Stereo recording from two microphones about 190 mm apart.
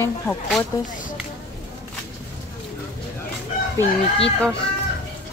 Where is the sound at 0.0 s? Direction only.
5° left (ahead or behind).